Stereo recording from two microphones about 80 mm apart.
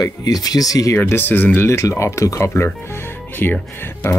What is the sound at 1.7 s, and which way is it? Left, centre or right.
Speech, left.